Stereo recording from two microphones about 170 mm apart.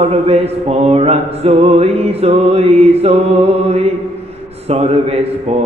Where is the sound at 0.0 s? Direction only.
40° right (ahead or behind).